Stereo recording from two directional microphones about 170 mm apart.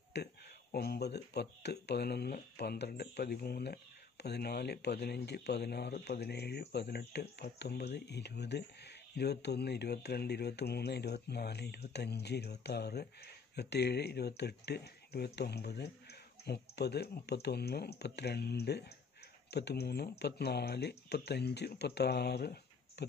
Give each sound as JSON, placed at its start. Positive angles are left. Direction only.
{"t": 0.1, "sound": "speech", "side_deg": 80}
{"t": 0.7, "sound": "speech", "side_deg": 70}